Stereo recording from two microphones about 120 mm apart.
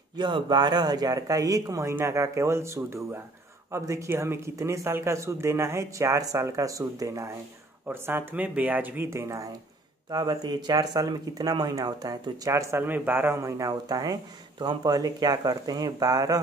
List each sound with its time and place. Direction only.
0.1 s speech: 40° right (ahead or behind)
7.8 s speech: 20° right (ahead or behind)